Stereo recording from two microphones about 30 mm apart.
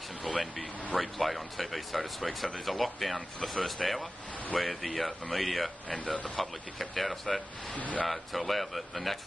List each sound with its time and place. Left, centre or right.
0.3 s vehicle: centre
0.9 s speech: centre
7.7 s speech: left
8.0 s speech: centre